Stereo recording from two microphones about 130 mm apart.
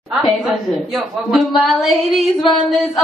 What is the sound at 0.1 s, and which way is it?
Speech, centre (ahead or behind).